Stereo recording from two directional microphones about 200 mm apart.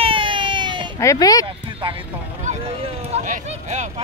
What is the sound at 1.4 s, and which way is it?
Speech, 25° right (ahead or behind).